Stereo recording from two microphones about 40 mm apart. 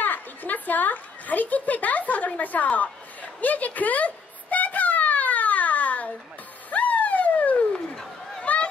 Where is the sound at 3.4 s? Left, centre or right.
Left.